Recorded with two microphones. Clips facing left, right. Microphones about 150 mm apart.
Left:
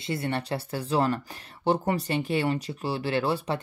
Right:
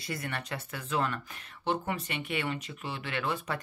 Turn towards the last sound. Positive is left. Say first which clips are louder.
# left 7 dB
turn(degrees=35)  # may be behind; listen again after turning